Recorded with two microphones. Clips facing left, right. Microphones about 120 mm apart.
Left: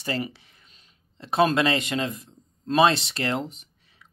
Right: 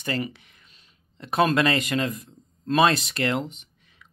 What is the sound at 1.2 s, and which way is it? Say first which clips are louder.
Speech: even; 25° left (ahead or behind).